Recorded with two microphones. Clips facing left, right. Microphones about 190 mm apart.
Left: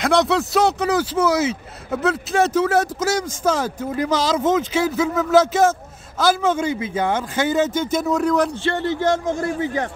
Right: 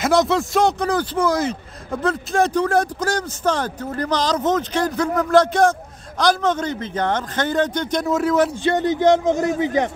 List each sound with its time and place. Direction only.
0.0 s speech: centre (ahead or behind)
8.6 s a man's voice: 15° right (ahead or behind)